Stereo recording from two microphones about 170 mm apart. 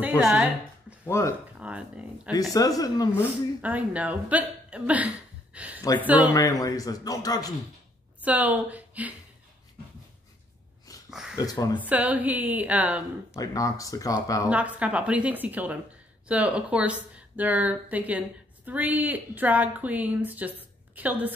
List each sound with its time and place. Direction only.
0.2 s a woman's voice: 5° right (ahead or behind)
1.0 s speech: 15° left (ahead or behind)
1.6 s speech: 5° right (ahead or behind)
2.5 s speech: 20° left (ahead or behind)
3.1 s speech: 10° right (ahead or behind)
6.3 s speech: 20° left (ahead or behind)
8.2 s a woman's voice: 10° right (ahead or behind)
11.1 s a sound: 5° right (ahead or behind)
11.3 s speech: 20° left (ahead or behind)
11.8 s speech: 10° right (ahead or behind)
13.3 s speech: 20° left (ahead or behind)
14.5 s speech: 10° right (ahead or behind)